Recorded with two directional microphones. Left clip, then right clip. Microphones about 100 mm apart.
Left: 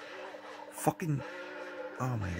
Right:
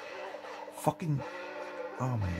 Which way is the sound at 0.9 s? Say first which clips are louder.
Even; 30° left (ahead or behind).